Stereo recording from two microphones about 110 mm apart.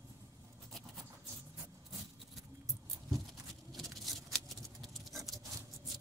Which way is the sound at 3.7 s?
Centre (ahead or behind).